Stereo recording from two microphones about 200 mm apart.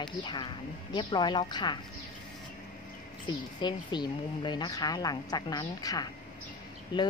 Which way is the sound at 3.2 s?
20° left (ahead or behind).